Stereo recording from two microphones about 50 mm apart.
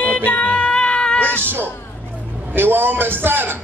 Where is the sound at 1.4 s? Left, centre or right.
Right.